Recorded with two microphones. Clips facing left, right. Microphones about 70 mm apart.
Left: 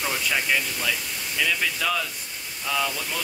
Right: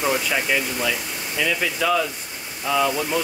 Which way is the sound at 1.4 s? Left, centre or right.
Centre.